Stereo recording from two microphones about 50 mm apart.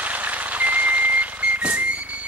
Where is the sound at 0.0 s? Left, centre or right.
Right.